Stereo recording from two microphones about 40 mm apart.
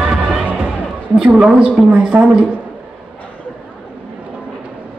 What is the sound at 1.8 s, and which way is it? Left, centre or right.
Speech, centre.